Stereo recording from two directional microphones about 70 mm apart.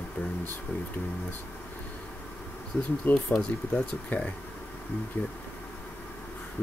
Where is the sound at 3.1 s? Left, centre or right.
Centre.